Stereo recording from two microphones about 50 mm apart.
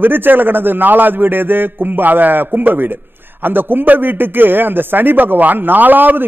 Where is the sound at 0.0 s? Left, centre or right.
Right.